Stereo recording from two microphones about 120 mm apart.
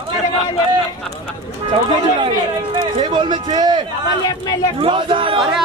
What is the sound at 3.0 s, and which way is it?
Speech, 40° right (ahead or behind).